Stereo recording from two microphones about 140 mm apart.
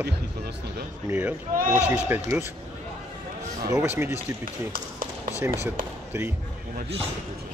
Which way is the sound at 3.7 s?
20° right (ahead or behind).